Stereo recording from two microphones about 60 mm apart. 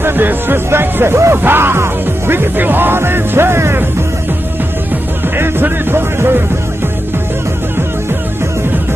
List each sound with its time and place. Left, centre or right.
0.0 s speech: right
5.4 s speech: right